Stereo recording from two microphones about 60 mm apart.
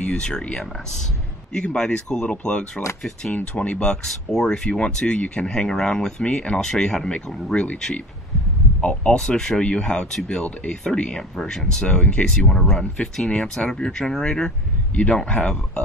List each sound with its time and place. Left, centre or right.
0.0 s speech: centre